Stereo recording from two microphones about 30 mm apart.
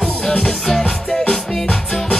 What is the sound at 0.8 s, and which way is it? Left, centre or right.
Music, left.